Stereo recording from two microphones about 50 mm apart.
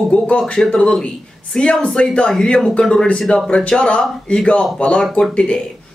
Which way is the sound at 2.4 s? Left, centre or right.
Centre.